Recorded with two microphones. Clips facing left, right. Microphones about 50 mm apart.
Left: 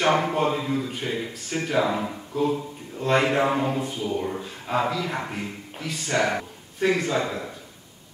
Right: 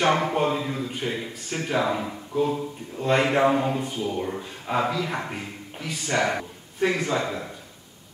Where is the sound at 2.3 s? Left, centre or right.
Centre.